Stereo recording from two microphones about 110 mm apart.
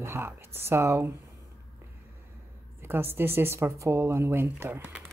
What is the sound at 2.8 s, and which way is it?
A woman's voice, 20° right (ahead or behind).